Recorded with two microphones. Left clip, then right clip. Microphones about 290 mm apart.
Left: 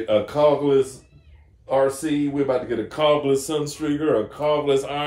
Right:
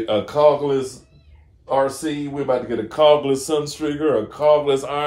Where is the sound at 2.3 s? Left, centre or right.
Centre.